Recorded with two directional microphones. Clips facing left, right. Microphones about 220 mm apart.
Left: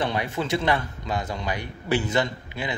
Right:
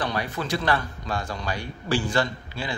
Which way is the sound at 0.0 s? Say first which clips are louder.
Left 2 dB; 25° left (ahead or behind).